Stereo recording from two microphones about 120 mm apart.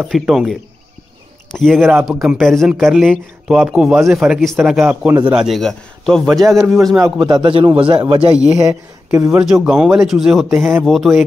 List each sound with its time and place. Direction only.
0.0 s a man's voice: 5° right (ahead or behind)
1.8 s speech: 10° right (ahead or behind)
4.8 s speech: 15° right (ahead or behind)
5.3 s speech: 5° right (ahead or behind)
7.2 s a man's voice: 40° right (ahead or behind)
9.1 s speech: 20° right (ahead or behind)
9.4 s speech: 5° right (ahead or behind)